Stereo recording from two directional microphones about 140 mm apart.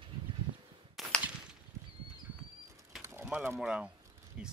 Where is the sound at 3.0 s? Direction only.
15° right (ahead or behind).